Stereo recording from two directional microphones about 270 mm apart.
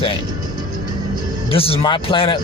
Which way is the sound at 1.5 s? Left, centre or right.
Left.